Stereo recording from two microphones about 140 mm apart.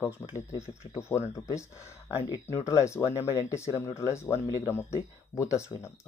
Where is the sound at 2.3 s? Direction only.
20° left (ahead or behind).